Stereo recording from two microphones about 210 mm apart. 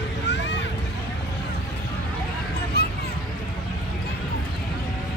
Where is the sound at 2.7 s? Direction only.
50° left (ahead or behind).